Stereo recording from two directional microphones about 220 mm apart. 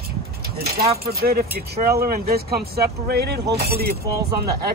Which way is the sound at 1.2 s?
45° right (ahead or behind).